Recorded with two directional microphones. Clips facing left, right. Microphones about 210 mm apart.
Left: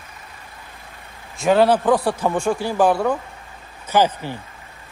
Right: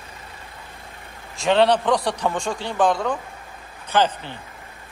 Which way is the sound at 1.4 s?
5° left (ahead or behind).